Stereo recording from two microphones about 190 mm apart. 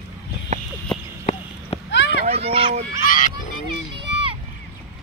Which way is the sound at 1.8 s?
70° left (ahead or behind).